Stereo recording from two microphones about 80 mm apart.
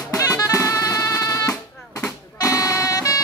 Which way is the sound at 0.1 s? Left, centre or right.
Left.